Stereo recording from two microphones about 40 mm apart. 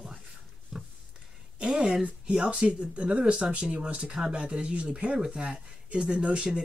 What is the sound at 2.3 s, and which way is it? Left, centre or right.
Speech, right.